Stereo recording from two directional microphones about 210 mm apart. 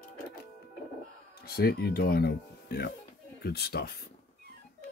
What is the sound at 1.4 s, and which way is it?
Speech, 50° left (ahead or behind).